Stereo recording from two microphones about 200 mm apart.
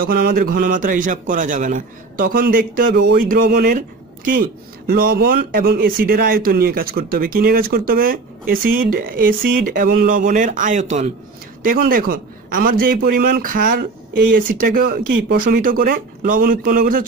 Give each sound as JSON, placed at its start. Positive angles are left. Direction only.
{"t": 0.0, "sound": "a man's voice", "side_deg": -45}